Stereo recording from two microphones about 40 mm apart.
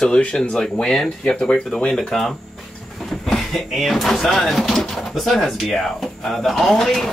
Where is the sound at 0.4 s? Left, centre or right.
Centre.